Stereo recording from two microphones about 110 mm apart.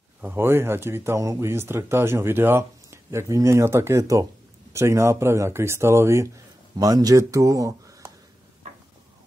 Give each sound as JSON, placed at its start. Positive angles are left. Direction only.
{"t": 0.2, "sound": "speech", "side_deg": -20}